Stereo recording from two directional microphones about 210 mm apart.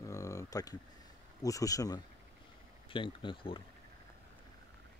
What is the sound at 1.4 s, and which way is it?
Speech, 15° left (ahead or behind).